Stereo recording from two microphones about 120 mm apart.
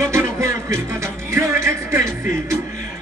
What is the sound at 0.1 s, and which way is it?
Music, 20° right (ahead or behind).